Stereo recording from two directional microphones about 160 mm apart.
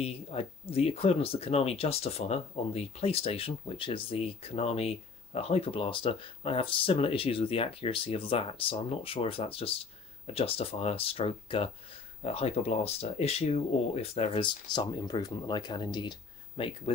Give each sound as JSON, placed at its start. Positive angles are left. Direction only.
{"t": 0.0, "sound": "speech", "side_deg": 40}